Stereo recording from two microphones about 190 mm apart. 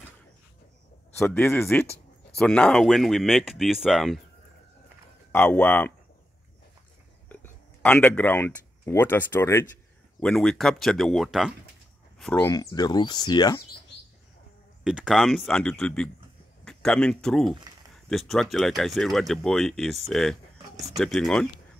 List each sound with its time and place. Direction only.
1.2 s speech: 10° left (ahead or behind)
5.3 s speech: 10° left (ahead or behind)
7.2 s speech: 5° left (ahead or behind)
12.4 s speech: 20° left (ahead or behind)
14.8 s speech: 5° right (ahead or behind)